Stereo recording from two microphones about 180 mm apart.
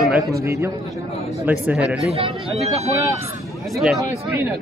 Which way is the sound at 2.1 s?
35° right (ahead or behind).